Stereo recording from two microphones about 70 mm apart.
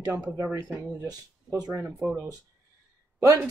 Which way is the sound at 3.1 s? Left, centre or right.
Right.